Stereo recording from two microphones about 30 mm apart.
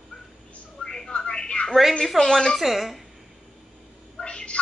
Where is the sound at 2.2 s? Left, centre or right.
Left.